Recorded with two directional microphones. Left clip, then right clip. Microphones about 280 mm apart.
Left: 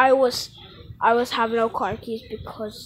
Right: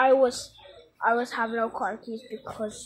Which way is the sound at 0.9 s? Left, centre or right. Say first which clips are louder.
Left 5 dB; centre.